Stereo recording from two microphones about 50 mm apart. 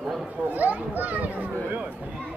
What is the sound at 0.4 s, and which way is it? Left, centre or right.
Speech, right.